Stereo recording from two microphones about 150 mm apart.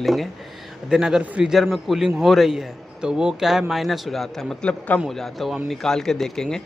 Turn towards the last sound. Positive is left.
turn(degrees=5)  # may be behind; listen again after turning